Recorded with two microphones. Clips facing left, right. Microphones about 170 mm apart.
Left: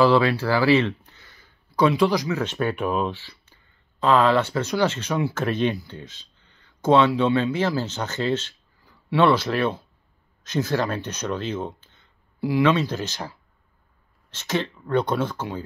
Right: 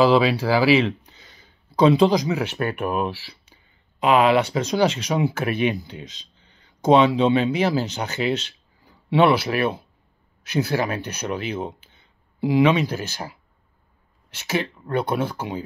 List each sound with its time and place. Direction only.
0.0 s speech: 15° right (ahead or behind)